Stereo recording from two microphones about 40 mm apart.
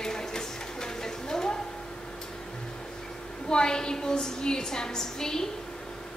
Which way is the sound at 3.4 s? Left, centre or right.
Centre.